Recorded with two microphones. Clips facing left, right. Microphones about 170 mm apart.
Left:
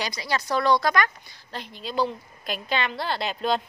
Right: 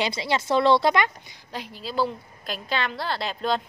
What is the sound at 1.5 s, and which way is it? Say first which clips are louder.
A woman's voice: right 1 dB; 10° right (ahead or behind).